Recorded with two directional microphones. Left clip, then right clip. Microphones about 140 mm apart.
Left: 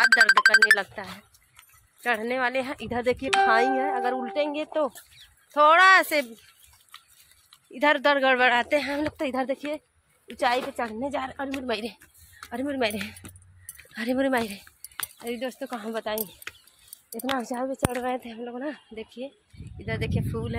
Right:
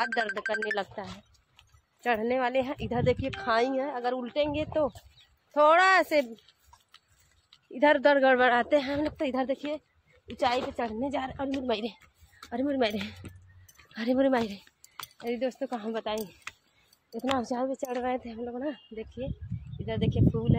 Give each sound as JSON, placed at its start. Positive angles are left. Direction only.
{"t": 0.4, "sound": "speech", "side_deg": 90}
{"t": 0.7, "sound": "speech", "side_deg": 0}
{"t": 2.0, "sound": "speech", "side_deg": -15}
{"t": 2.9, "sound": "speech", "side_deg": 25}
{"t": 4.5, "sound": "speech", "side_deg": 20}
{"t": 5.5, "sound": "speech", "side_deg": -10}
{"t": 7.7, "sound": "speech", "side_deg": -25}
{"t": 8.9, "sound": "speech", "side_deg": 20}
{"t": 11.0, "sound": "a woman's voice", "side_deg": 15}
{"t": 16.5, "sound": "a sound", "side_deg": -15}
{"t": 17.4, "sound": "a woman's voice", "side_deg": 15}
{"t": 18.1, "sound": "speech", "side_deg": 5}